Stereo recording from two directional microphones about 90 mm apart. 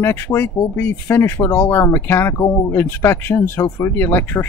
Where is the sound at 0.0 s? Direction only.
25° left (ahead or behind).